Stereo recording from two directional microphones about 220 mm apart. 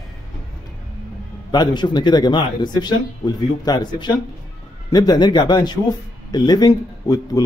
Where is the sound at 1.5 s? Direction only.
20° left (ahead or behind).